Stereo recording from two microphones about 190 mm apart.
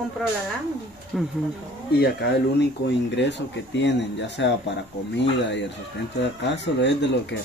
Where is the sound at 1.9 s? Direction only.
60° left (ahead or behind).